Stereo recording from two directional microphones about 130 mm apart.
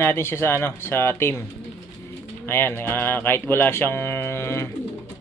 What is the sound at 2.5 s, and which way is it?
Speech, 15° left (ahead or behind).